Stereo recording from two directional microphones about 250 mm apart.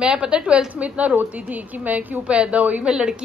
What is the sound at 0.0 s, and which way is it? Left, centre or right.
A woman's voice, centre.